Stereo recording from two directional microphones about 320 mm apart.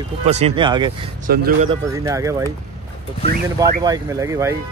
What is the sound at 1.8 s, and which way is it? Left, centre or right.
Speech, centre.